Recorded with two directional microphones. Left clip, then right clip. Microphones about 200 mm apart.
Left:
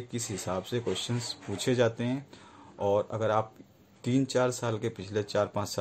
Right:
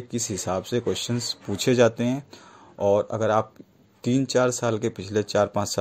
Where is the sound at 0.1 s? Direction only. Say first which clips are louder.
Right 7 dB; 30° right (ahead or behind).